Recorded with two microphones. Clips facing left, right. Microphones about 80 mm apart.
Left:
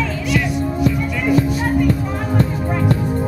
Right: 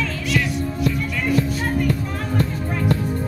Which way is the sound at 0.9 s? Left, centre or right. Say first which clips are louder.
Left 3 dB; centre.